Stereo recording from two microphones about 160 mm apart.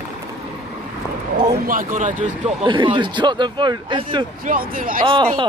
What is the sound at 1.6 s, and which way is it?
Speech, 55° right (ahead or behind).